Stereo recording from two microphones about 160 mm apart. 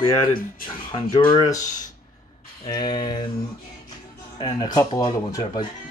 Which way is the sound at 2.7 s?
25° left (ahead or behind).